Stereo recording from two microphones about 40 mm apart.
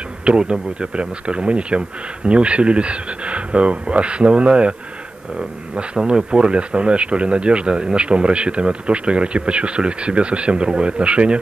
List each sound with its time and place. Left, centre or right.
0.4 s speech: right
6.0 s speech: right